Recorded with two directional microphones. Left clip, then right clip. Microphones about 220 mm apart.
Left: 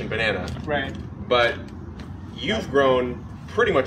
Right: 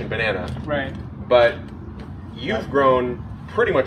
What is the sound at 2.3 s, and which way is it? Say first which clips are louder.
Speech: right 1 dB; centre (ahead or behind).